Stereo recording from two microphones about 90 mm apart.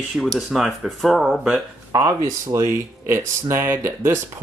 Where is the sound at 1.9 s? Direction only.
35° right (ahead or behind).